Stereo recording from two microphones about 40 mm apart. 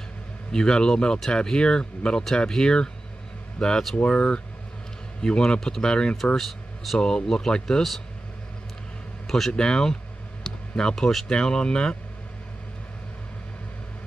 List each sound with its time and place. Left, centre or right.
0.5 s speech: centre
6.3 s speech: centre
7.0 s speech: centre
9.5 s speech: centre
10.4 s clicking: centre
11.2 s speech: left